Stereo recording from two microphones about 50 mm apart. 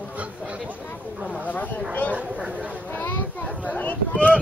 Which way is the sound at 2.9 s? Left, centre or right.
Left.